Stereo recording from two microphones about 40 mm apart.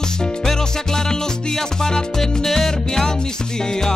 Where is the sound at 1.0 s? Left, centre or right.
Centre.